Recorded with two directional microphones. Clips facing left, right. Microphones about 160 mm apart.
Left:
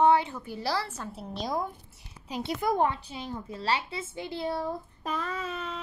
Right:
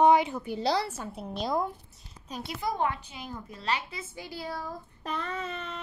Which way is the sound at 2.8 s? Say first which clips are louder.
Left 3 dB; 30° left (ahead or behind).